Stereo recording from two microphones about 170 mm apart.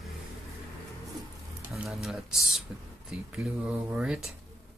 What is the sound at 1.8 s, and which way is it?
Speech, centre (ahead or behind).